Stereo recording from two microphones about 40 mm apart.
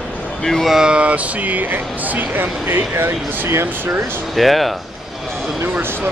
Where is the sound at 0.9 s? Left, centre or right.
Right.